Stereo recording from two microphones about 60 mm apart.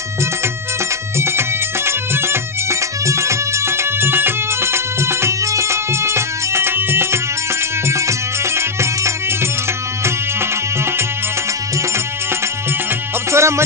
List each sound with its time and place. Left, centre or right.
1.9 s music: right
7.9 s music: right
13.3 s music: right